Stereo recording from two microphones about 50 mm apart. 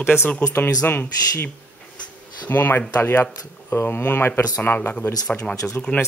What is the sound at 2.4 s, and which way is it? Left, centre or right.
Speech, left.